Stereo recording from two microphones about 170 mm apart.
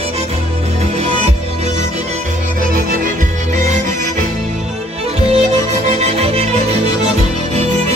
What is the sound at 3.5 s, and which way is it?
Music, 45° right (ahead or behind).